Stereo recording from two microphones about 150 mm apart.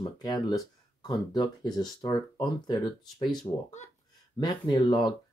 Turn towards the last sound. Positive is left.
turn(degrees=30)  # may be behind; listen again after turning